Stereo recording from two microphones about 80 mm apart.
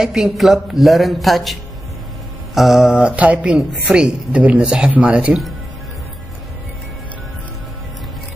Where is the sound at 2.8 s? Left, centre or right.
Centre.